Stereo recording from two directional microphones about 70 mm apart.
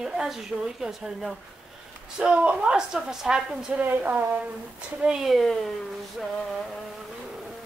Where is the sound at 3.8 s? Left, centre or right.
Right.